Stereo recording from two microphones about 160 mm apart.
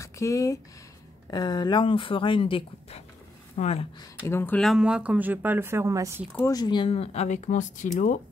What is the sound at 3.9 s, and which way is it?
Speech, 20° left (ahead or behind).